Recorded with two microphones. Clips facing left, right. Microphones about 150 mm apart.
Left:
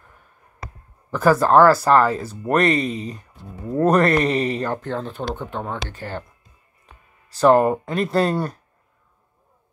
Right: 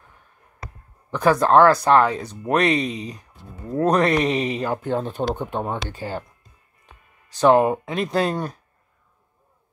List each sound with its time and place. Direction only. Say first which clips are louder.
1.1 s speech: left 1 dB; 5° left (ahead or behind)
4.8 s speech: right 3 dB; 15° right (ahead or behind)
7.2 s speech: left 1 dB; centre (ahead or behind)